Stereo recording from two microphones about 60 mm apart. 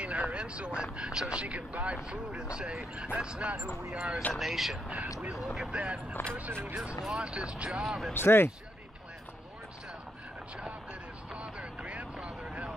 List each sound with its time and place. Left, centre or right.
0.0 s speech: centre
4.3 s speech: centre
4.8 s speech: right
5.3 s speech: centre
5.8 s speech: right
7.8 s speech: centre
8.1 s speech: left
11.3 s vehicle: centre